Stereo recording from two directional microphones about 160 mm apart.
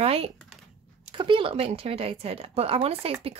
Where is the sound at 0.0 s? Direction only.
40° right (ahead or behind).